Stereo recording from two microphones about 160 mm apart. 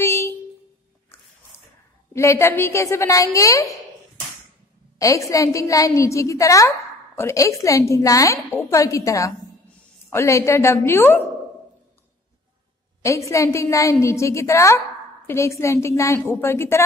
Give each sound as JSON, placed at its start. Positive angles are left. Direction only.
{"t": 0.0, "sound": "a sound", "side_deg": 15}
{"t": 2.1, "sound": "a woman's voice", "side_deg": 15}
{"t": 4.9, "sound": "a woman's voice", "side_deg": 20}
{"t": 13.0, "sound": "a woman's voice", "side_deg": 20}